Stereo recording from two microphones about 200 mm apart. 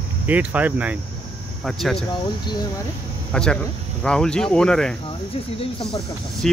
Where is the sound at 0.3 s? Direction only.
5° right (ahead or behind).